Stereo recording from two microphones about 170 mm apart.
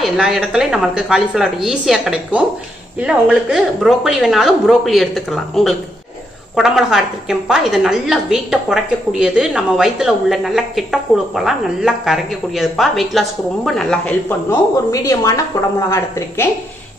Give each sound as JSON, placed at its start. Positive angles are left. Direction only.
{"t": 0.0, "sound": "a woman's voice", "side_deg": 0}
{"t": 14.5, "sound": "a woman's voice", "side_deg": 20}